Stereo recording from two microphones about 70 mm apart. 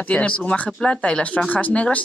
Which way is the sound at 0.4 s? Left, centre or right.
Centre.